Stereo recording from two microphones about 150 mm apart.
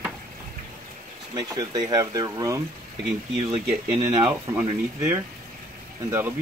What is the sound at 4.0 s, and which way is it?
Speech, 20° right (ahead or behind).